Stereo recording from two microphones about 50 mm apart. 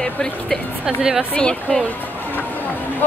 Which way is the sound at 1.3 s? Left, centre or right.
Centre.